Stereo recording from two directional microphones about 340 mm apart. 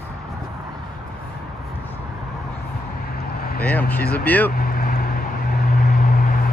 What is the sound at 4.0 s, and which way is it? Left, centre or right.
Speech, left.